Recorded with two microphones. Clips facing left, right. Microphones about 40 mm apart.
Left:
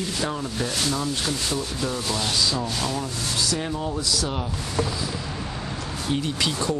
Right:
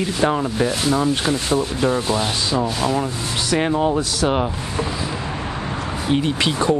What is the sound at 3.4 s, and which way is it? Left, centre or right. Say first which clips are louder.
Speech: right 10 dB; right.